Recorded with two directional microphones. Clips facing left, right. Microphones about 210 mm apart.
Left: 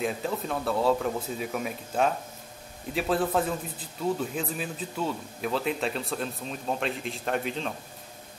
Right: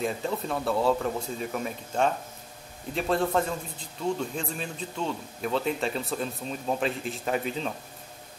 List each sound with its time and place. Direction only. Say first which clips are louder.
0.0 s a man's voice: even; centre (ahead or behind)